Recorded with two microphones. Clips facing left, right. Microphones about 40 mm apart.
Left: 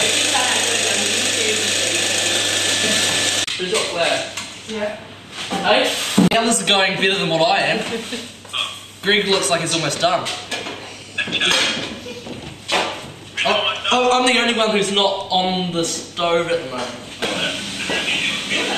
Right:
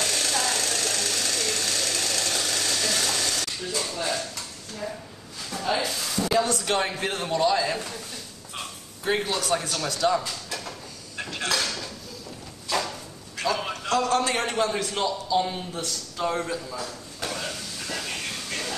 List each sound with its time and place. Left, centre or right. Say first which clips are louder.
0.0 s sewing machine: left 8 dB; left
5.4 s speech: left 10 dB; left
11.1 s dishes: left 9 dB; left
12.6 s a sound: left 7 dB; left